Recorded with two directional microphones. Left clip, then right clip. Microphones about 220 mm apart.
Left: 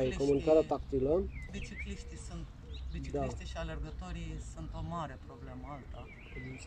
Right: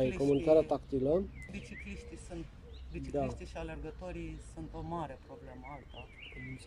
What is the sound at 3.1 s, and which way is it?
Speech, 10° right (ahead or behind).